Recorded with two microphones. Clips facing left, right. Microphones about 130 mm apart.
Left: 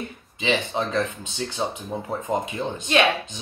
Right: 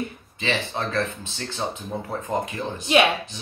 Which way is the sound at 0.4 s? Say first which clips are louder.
Left 3 dB; 15° left (ahead or behind).